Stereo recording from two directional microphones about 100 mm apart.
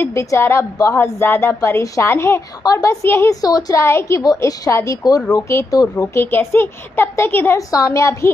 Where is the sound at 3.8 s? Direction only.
30° left (ahead or behind).